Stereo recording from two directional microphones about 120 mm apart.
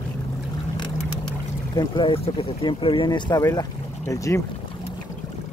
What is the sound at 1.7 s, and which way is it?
Speech, 40° left (ahead or behind).